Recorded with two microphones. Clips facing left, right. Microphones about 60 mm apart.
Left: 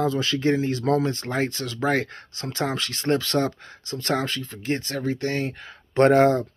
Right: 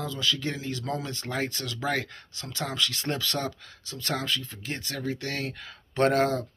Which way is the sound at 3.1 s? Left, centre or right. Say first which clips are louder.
Left 12 dB; centre.